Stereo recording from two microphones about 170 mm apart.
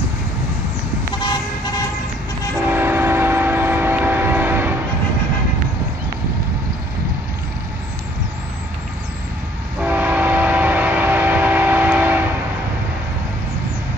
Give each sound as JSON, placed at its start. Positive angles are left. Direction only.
{"t": 1.2, "sound": "vehicle", "side_deg": 25}
{"t": 2.6, "sound": "train", "side_deg": -10}
{"t": 9.8, "sound": "train", "side_deg": -10}